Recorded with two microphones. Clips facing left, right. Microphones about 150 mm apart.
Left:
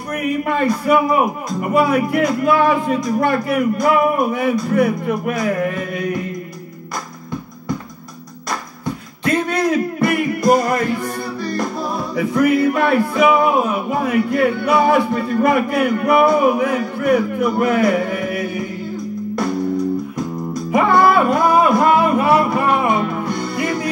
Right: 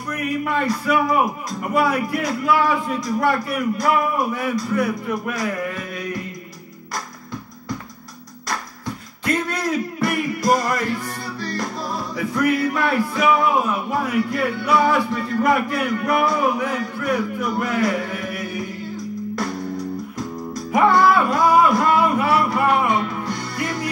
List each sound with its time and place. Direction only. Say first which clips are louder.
0.4 s a man's voice: left 4 dB; 55° left (ahead or behind)
9.5 s a sound: left 6 dB; 55° left (ahead or behind)
10.3 s music: left 5 dB; 55° left (ahead or behind)
13.9 s a man's voice: left 5 dB; 55° left (ahead or behind)
18.9 s music: left 4 dB; 55° left (ahead or behind)